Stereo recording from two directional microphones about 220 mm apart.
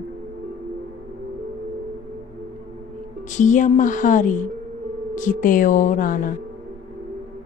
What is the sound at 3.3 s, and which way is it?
A woman's voice, 35° left (ahead or behind).